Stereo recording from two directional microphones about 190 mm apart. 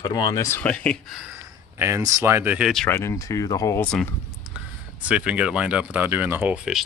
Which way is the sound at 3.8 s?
5° left (ahead or behind).